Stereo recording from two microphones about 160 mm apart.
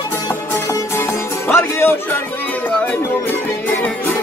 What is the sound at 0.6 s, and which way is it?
Music, 15° left (ahead or behind).